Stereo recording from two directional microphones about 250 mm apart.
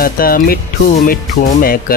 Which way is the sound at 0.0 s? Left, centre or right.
Left.